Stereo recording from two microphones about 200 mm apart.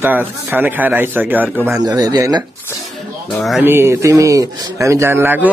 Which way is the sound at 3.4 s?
Centre (ahead or behind).